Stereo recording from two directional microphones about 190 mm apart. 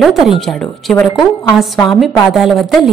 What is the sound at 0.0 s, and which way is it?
A woman's voice, centre (ahead or behind).